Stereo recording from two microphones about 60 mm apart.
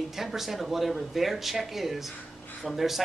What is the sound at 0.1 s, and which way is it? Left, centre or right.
Speech, centre.